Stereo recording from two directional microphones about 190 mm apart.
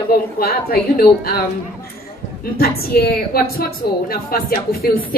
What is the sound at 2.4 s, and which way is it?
A woman's voice, 55° left (ahead or behind).